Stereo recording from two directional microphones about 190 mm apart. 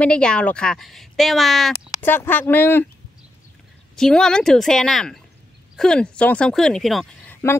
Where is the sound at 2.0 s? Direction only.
10° left (ahead or behind).